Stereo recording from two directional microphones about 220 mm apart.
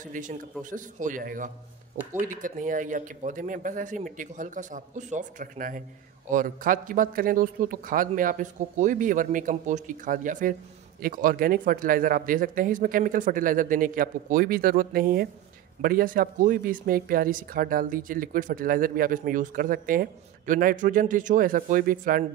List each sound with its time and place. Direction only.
0.0 s speech: 35° right (ahead or behind)